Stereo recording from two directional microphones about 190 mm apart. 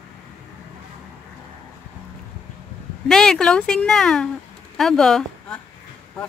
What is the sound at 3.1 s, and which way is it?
Speech, 5° left (ahead or behind).